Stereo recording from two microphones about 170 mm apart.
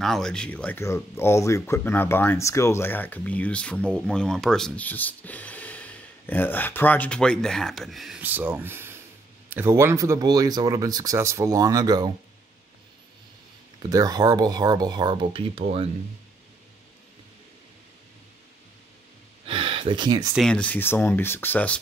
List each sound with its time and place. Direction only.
0.0 s speech: centre (ahead or behind); by 12.1 s 20° right (ahead or behind)
13.8 s speech: 20° right (ahead or behind)
19.4 s a sound: 30° right (ahead or behind)
20.3 s speech: 5° left (ahead or behind)